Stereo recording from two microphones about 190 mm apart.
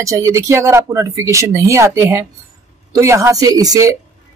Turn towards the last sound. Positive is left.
turn(degrees=-20)  # may be behind; listen again after turning